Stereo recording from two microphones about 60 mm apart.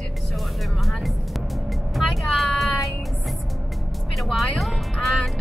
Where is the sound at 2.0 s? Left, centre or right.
Centre.